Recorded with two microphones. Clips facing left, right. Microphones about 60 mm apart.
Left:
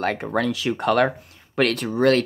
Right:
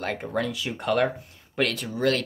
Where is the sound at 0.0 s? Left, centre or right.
Left.